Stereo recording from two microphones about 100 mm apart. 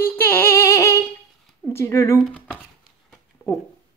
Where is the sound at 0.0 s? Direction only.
20° left (ahead or behind).